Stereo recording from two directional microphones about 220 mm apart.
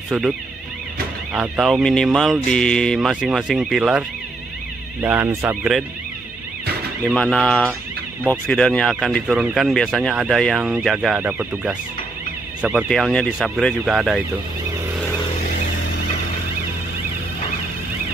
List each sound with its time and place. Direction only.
1.3 s speech: 5° right (ahead or behind)
5.0 s speech: 10° right (ahead or behind)
7.1 s speech: centre (ahead or behind)
15.5 s a sound: 45° left (ahead or behind)